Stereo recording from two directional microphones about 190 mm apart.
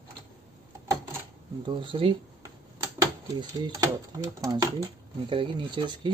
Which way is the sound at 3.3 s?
25° right (ahead or behind).